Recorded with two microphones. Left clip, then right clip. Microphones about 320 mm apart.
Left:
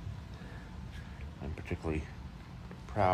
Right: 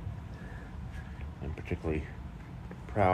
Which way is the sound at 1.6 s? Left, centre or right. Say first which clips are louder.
Right 3 dB; centre.